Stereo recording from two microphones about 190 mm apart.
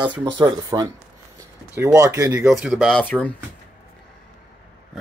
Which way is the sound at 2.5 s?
Centre (ahead or behind).